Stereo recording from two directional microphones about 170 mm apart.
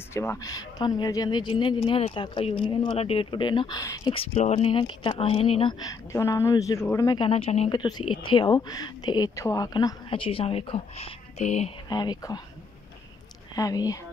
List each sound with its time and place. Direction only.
0.1 s a woman's voice: 15° left (ahead or behind)
4.1 s a woman's voice: 35° left (ahead or behind); by 7.2 s 15° left (ahead or behind)
7.2 s a woman's voice: 35° left (ahead or behind)
11.9 s a woman's voice: 25° left (ahead or behind)
13.6 s a woman's voice: 20° left (ahead or behind)